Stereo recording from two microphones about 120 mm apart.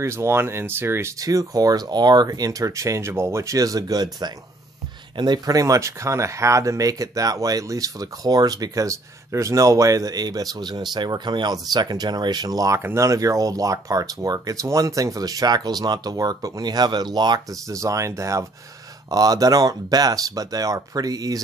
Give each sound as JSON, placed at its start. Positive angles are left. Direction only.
{"t": 0.0, "sound": "speech", "side_deg": -25}